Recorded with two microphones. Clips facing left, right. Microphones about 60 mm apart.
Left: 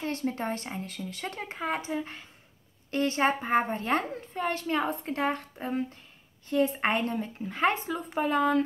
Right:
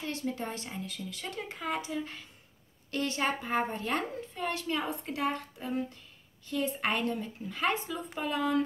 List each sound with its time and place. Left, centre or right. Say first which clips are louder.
0.0 s a woman's voice: left 4 dB; left